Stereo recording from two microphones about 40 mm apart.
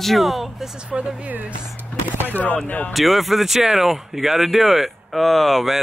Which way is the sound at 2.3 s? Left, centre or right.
Left.